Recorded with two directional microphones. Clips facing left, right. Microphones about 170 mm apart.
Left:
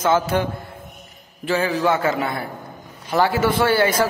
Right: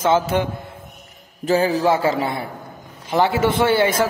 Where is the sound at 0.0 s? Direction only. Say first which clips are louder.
Right 1 dB; 25° right (ahead or behind).